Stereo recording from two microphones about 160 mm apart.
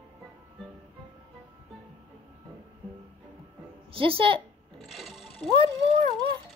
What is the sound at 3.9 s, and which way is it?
Speech, 35° right (ahead or behind).